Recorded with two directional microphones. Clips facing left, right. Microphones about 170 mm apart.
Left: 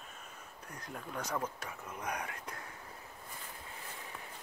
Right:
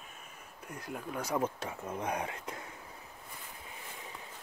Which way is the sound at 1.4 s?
25° right (ahead or behind).